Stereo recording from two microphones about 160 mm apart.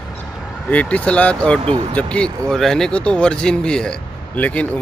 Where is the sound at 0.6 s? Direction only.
10° left (ahead or behind).